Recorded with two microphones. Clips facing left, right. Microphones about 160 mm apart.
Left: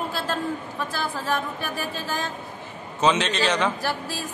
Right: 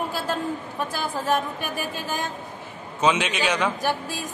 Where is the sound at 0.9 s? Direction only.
20° right (ahead or behind).